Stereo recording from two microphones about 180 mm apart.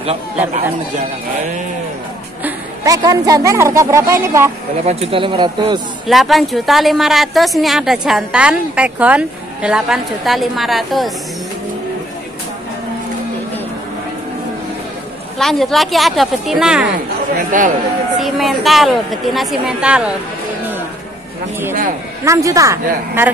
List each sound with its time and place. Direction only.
2.4 s a woman's voice: 20° right (ahead or behind)
4.8 s speech: 35° right (ahead or behind)
6.0 s a woman's voice: centre (ahead or behind)
15.3 s a woman's voice: centre (ahead or behind)
17.4 s a man's voice: 45° right (ahead or behind)
18.1 s a woman's voice: centre (ahead or behind)
22.2 s speech: 15° right (ahead or behind)